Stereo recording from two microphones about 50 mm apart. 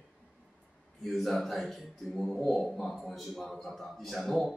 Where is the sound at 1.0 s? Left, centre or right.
Centre.